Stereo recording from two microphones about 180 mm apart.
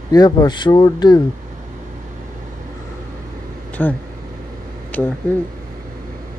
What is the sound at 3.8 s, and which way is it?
Speech, 10° left (ahead or behind).